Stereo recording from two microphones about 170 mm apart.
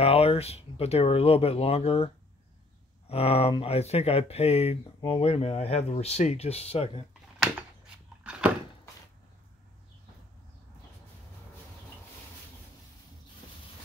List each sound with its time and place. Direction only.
0.0 s speech: 35° left (ahead or behind)
3.1 s speech: 35° left (ahead or behind)
8.2 s door: 5° right (ahead or behind)